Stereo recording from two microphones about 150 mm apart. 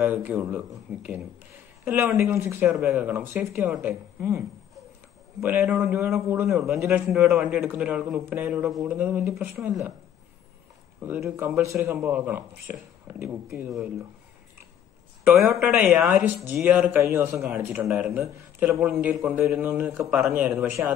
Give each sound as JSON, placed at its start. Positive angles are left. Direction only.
{"t": 0.0, "sound": "a man's voice", "side_deg": -10}
{"t": 5.4, "sound": "a man's voice", "side_deg": -15}
{"t": 11.1, "sound": "a man's voice", "side_deg": -15}
{"t": 15.4, "sound": "a man's voice", "side_deg": -10}